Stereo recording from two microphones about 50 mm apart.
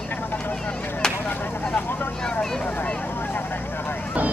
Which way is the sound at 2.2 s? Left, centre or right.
Centre.